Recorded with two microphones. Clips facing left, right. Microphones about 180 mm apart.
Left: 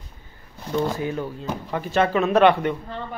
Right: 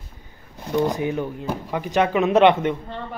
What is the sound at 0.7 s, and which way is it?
A man's voice, 15° right (ahead or behind).